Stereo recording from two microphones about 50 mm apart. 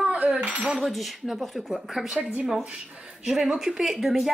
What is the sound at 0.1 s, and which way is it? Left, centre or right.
Speech, right.